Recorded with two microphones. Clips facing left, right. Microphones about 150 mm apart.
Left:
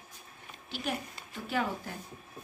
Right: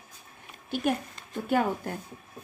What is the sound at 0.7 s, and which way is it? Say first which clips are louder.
A woman's voice: right 8 dB; 50° right (ahead or behind).